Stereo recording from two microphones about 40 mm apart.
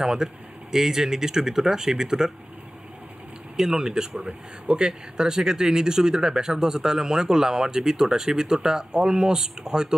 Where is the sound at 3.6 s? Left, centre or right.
Centre.